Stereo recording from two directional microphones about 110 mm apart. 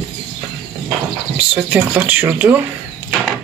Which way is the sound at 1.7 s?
15° right (ahead or behind).